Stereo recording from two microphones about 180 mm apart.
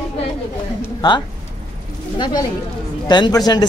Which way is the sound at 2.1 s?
20° left (ahead or behind).